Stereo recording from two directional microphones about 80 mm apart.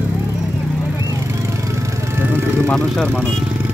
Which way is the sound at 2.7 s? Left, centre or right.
Centre.